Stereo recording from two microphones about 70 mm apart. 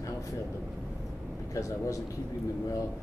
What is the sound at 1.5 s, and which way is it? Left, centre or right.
Speech, left.